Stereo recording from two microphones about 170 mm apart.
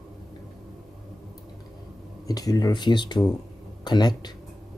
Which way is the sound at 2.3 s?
20° left (ahead or behind).